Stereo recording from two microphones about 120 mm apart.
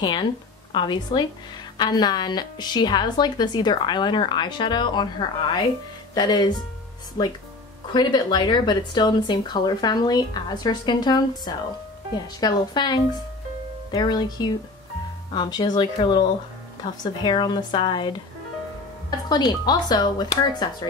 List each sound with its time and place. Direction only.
0.7 s a woman's voice: 40° left (ahead or behind)